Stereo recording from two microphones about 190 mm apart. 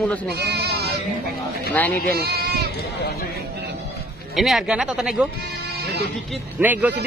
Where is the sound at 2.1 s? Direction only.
55° right (ahead or behind).